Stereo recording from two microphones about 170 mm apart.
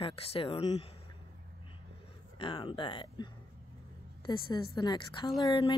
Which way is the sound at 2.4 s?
30° left (ahead or behind).